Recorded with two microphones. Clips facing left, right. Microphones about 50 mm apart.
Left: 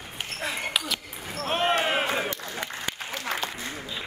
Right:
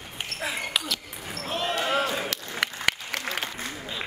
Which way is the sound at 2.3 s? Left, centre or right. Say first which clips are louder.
Right 2 dB; right.